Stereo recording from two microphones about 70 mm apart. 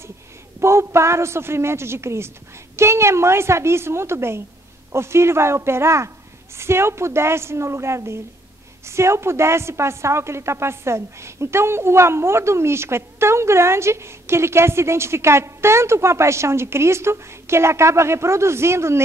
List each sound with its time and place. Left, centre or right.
0.6 s a woman's voice: right